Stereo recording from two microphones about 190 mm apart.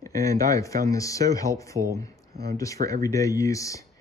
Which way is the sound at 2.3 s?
55° right (ahead or behind).